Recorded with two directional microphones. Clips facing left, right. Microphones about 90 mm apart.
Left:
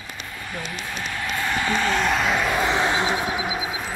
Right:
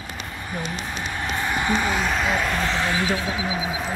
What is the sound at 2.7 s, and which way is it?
Speech, 20° left (ahead or behind).